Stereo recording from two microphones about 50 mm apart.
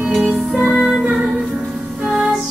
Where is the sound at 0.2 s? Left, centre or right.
Centre.